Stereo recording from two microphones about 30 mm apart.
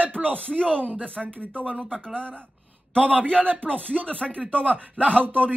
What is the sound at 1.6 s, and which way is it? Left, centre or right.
Speech, centre.